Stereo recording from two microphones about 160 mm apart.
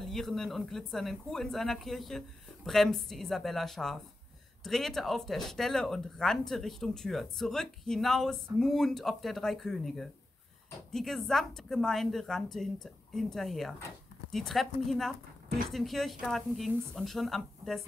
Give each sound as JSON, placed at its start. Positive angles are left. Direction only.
{"t": 0.0, "sound": "speech", "side_deg": 0}